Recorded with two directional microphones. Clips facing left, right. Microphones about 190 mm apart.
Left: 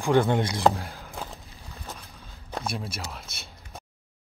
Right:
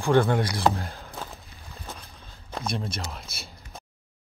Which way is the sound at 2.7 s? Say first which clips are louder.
Right 4 dB; 5° left (ahead or behind).